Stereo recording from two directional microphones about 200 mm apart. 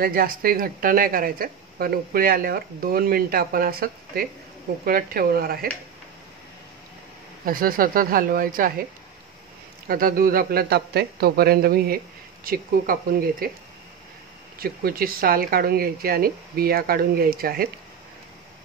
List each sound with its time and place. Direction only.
0.0 s speech: 45° right (ahead or behind)
7.4 s speech: 45° right (ahead or behind)
9.8 s speech: 45° right (ahead or behind)
14.6 s speech: 45° right (ahead or behind)